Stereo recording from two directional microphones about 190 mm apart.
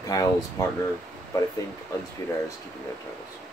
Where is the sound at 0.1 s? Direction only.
20° left (ahead or behind).